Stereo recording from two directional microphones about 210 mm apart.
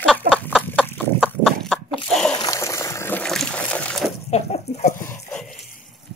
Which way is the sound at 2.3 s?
15° left (ahead or behind).